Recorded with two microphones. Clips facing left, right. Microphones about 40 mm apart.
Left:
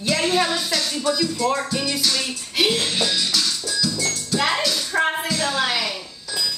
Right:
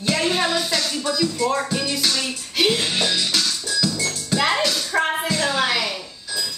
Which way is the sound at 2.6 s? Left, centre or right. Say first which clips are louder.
Right 1 dB; centre.